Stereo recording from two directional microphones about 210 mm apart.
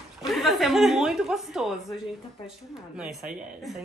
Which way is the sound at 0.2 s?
Centre (ahead or behind).